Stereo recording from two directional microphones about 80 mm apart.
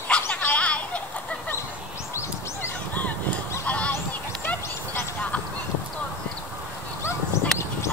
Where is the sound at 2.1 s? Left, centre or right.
Left.